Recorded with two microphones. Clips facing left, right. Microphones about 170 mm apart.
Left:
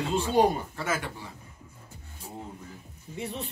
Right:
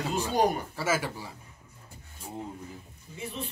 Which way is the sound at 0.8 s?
5° right (ahead or behind).